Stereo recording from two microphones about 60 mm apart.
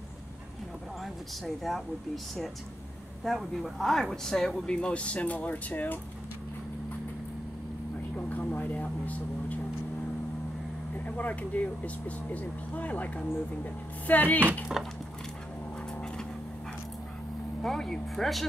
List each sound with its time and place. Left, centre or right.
1.0 s speech: centre
3.3 s speech: centre; by 5.9 s left
8.3 s vehicle: left
11.1 s speech: left
14.8 s speech: centre
17.6 s speech: centre